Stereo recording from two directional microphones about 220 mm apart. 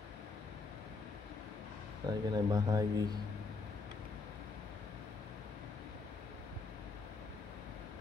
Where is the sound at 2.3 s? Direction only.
20° right (ahead or behind).